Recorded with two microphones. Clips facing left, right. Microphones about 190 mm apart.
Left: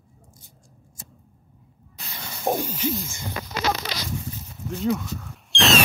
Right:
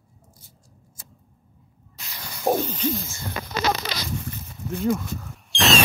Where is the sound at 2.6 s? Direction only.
10° left (ahead or behind).